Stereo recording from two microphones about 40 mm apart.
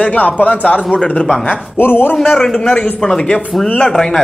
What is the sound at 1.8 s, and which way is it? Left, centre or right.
Speech, left.